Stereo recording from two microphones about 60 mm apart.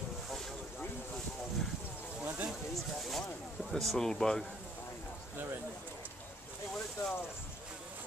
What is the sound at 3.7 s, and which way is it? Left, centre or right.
Speech, centre.